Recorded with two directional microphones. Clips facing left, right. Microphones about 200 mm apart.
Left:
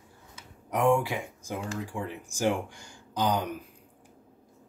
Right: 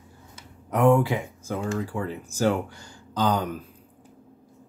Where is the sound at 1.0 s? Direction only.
15° left (ahead or behind).